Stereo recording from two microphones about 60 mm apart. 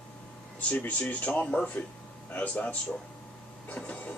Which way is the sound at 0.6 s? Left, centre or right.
Left.